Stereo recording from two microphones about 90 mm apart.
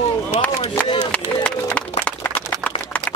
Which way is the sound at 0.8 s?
50° left (ahead or behind).